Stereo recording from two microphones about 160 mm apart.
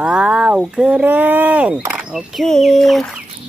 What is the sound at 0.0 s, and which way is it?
Speech, 5° right (ahead or behind).